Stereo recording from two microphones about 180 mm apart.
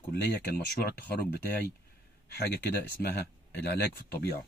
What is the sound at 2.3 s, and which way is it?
Speech, 60° left (ahead or behind).